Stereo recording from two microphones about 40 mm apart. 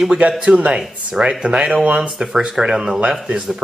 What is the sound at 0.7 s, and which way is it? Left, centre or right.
Speech, centre.